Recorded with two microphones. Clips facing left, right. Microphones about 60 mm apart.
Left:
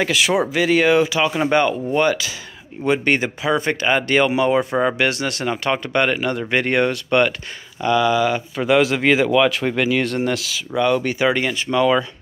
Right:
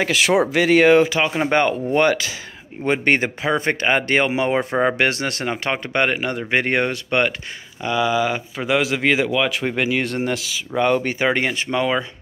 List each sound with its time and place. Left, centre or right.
0.0 s speech: right
0.5 s speech: right; by 8.6 s centre
8.6 s speech: centre
9.6 s speech: centre
10.3 s speech: centre
10.8 s speech: right